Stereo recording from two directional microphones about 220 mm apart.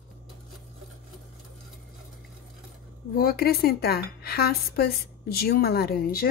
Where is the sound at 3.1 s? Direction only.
45° left (ahead or behind).